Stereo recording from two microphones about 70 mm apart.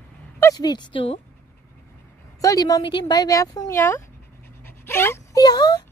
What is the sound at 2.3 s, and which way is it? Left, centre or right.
A woman's voice, left.